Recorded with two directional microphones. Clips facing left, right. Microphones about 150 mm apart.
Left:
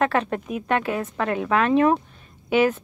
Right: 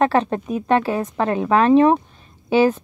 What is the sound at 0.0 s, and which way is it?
A woman's voice, 30° right (ahead or behind).